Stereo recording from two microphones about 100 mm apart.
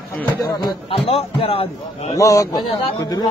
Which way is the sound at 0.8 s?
65° left (ahead or behind).